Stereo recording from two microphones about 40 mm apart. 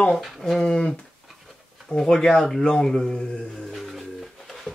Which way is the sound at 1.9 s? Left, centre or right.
Centre.